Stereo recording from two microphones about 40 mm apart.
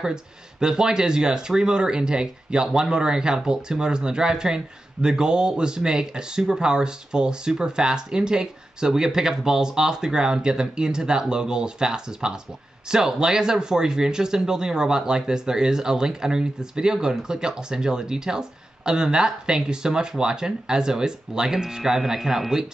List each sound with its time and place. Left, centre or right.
0.0 s speech: centre